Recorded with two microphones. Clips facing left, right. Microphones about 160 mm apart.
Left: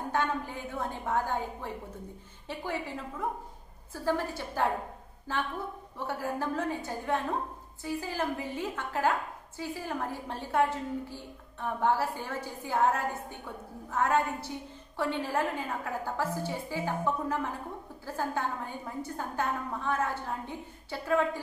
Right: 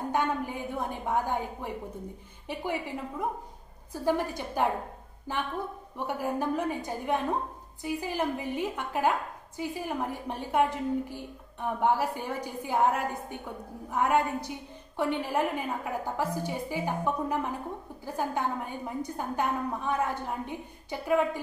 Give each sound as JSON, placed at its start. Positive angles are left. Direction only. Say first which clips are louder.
{"t": 0.1, "sound": "a woman's voice", "louder": "right 1 dB", "side_deg": -15}